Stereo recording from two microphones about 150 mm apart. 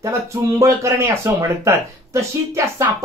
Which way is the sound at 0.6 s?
20° right (ahead or behind).